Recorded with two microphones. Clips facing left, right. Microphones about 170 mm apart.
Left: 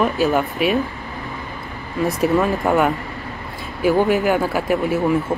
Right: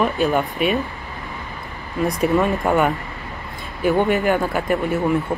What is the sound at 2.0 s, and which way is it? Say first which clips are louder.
Speech: left 1 dB; centre (ahead or behind).